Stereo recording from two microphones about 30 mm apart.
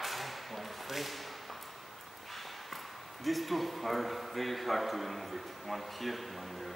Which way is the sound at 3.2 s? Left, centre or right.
Centre.